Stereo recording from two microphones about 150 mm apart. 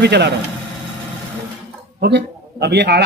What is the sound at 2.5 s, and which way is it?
Speech, 90° right.